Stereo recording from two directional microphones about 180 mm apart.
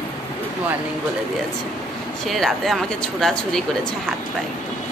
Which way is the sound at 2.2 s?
Centre (ahead or behind).